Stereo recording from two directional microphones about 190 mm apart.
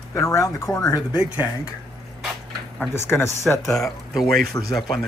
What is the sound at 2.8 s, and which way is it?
Speech, 10° left (ahead or behind).